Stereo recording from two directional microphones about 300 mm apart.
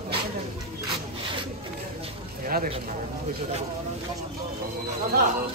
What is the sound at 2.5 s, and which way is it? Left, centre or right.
Speech, right.